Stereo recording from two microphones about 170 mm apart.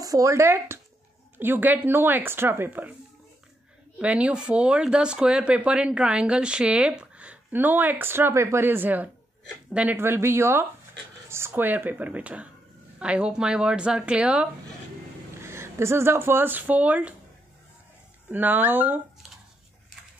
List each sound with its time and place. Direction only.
0.0 s speech: 20° right (ahead or behind)
4.0 s speech: 5° right (ahead or behind)
18.3 s speech: 10° right (ahead or behind)